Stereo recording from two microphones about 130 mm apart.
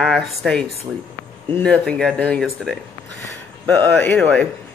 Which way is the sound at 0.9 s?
30° right (ahead or behind).